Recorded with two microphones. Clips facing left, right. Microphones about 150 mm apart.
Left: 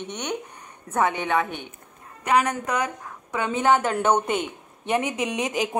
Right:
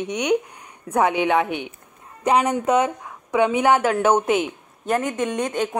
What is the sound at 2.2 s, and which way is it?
Speech, 25° right (ahead or behind).